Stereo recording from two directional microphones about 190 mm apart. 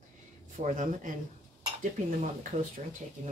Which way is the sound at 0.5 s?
40° right (ahead or behind).